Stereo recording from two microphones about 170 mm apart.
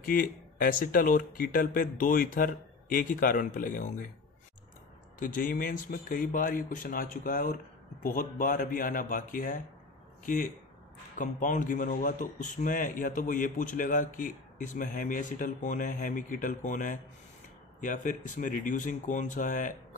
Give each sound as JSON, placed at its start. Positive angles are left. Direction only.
{"t": 0.0, "sound": "speech", "side_deg": 55}
{"t": 5.2, "sound": "speech", "side_deg": 55}